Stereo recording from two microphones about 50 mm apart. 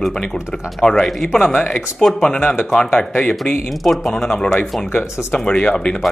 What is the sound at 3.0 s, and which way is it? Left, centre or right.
Speech, left.